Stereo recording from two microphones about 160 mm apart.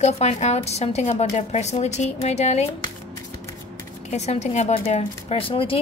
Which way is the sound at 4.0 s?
45° left (ahead or behind).